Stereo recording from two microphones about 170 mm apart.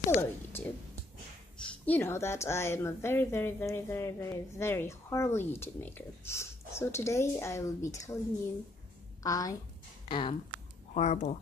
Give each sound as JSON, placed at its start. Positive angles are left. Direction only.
{"t": 0.1, "sound": "a woman's voice", "side_deg": 15}
{"t": 1.9, "sound": "a woman's voice", "side_deg": 15}
{"t": 9.2, "sound": "a woman's voice", "side_deg": 20}
{"t": 11.0, "sound": "speech", "side_deg": 45}